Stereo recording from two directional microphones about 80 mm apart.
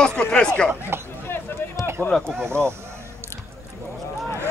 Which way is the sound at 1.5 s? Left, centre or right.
Left.